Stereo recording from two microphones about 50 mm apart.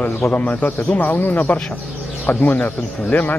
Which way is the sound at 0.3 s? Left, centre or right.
Left.